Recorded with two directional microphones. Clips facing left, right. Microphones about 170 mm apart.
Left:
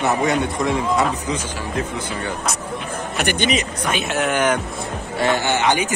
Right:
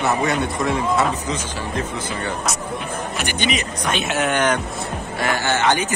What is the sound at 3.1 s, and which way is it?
Speech, 60° left (ahead or behind).